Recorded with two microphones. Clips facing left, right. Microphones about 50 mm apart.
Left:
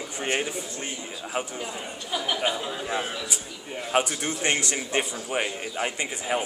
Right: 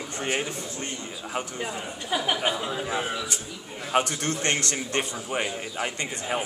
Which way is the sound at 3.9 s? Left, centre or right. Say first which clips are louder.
Right 1 dB; centre.